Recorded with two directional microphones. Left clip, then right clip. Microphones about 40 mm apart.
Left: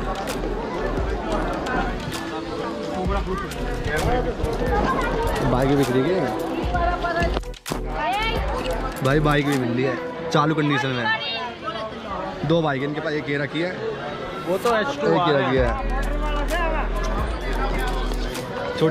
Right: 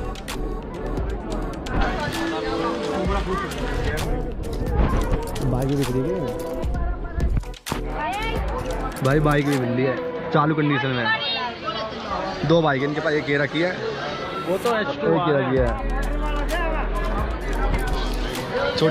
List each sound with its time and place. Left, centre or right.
9.1 s speech: left
12.4 s speech: left
12.8 s speech: centre
14.7 s speech: left